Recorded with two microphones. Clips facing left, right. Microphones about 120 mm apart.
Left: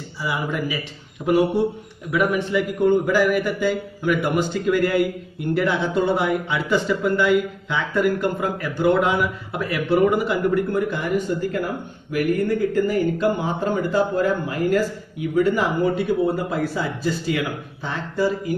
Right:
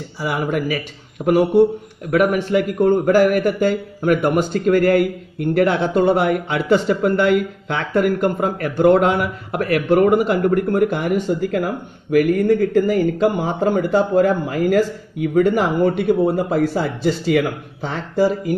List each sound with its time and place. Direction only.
0.3 s speech: 60° right (ahead or behind)
1.2 s speech: 30° right (ahead or behind)
2.0 s a man's voice: 55° right (ahead or behind); by 18.3 s 90° right